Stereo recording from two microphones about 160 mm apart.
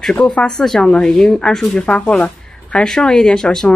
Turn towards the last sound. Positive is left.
turn(degrees=5)  # may be behind; listen again after turning